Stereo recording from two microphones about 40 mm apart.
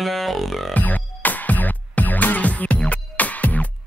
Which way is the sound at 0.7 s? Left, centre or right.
Left.